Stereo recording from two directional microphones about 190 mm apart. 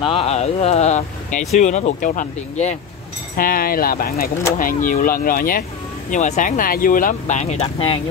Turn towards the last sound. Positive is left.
turn(degrees=30)  # may be behind; listen again after turning